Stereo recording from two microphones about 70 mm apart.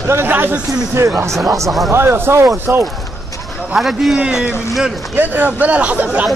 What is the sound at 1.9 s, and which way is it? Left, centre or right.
Speech, right.